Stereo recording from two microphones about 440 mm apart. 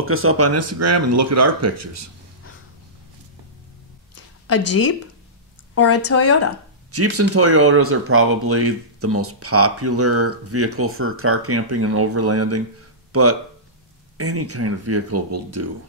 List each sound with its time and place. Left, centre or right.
0.0 s speech: right
4.1 s a sound: left
5.8 s speech: left
6.9 s speech: right